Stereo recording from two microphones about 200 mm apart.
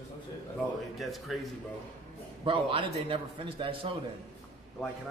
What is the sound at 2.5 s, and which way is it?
A man's voice, 25° right (ahead or behind).